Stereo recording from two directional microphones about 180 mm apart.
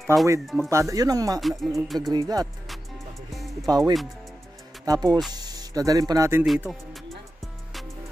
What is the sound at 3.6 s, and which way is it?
Speech, 20° right (ahead or behind).